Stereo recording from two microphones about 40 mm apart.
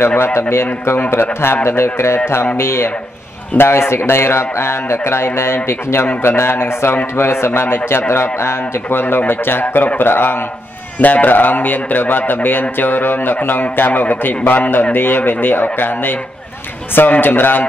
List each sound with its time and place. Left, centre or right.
0.2 s a man's voice: left
1.1 s a man's voice: left
11.0 s speech: left
17.2 s speech: left